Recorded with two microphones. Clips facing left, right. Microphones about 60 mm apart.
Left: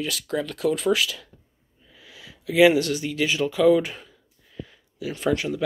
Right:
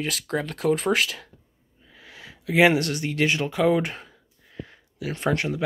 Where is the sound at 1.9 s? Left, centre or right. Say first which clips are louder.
Right 2 dB; right.